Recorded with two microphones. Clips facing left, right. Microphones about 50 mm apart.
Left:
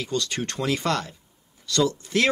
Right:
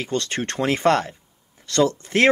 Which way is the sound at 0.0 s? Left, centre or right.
Right.